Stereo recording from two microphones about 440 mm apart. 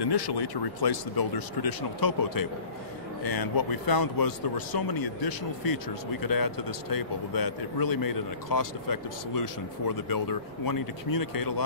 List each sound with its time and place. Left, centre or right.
0.0 s a man's voice: left